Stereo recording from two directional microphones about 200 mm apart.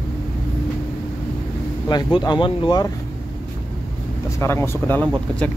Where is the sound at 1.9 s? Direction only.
20° left (ahead or behind).